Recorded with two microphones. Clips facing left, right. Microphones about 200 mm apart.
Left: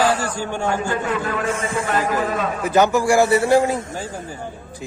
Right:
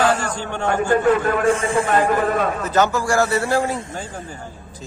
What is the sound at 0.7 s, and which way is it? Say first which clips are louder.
Speech: right 8 dB; 45° right (ahead or behind).